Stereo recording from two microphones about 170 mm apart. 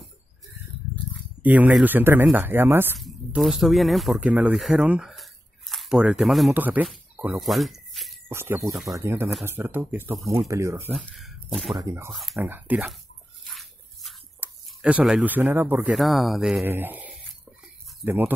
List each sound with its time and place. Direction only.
1.4 s speech: 10° right (ahead or behind)
3.0 s speech: centre (ahead or behind)
8.3 s speech: 15° right (ahead or behind)
8.7 s speech: centre (ahead or behind)
9.0 s speech: 15° right (ahead or behind)
11.1 s speech: 5° left (ahead or behind)
11.8 s speech: 15° right (ahead or behind)
12.1 s speech: centre (ahead or behind)
12.4 s speech: 10° right (ahead or behind)
13.5 s a sound: centre (ahead or behind)
14.4 s speech: 5° right (ahead or behind)
16.6 s speech: 10° right (ahead or behind)